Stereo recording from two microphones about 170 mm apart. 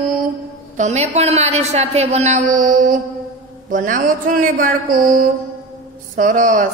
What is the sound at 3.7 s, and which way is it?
Speech, 50° right (ahead or behind).